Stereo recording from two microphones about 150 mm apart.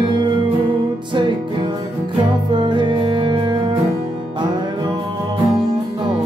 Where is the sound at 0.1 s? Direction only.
30° right (ahead or behind).